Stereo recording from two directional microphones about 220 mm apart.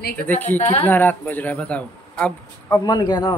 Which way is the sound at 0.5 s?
30° left (ahead or behind).